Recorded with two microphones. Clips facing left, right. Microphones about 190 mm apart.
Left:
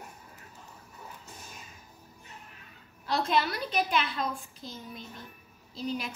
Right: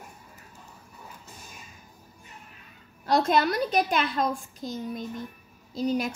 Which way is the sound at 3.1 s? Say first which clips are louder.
Right 5 dB; 45° right (ahead or behind).